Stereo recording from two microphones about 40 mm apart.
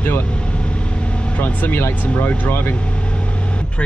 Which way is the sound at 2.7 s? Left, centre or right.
Left.